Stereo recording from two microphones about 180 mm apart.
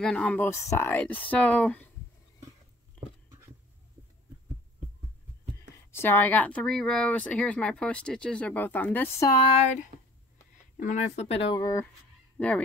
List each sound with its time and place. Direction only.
0.0 s speech: 5° left (ahead or behind)
5.9 s speech: 10° left (ahead or behind)
9.4 s speech: 30° left (ahead or behind)
10.8 s speech: 40° left (ahead or behind)
11.6 s speech: 15° left (ahead or behind)